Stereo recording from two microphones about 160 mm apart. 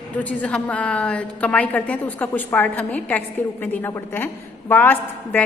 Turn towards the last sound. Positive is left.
turn(degrees=10)  # may be behind; listen again after turning